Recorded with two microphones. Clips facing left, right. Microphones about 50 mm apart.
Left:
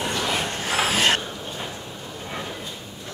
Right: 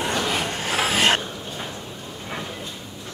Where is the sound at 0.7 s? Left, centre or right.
Centre.